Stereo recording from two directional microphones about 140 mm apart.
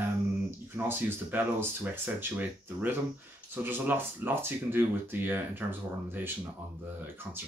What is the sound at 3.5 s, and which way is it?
Speech, 15° right (ahead or behind).